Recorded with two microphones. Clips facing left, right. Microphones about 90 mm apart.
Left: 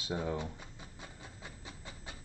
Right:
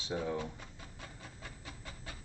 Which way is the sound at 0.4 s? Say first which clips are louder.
Even; 20° left (ahead or behind).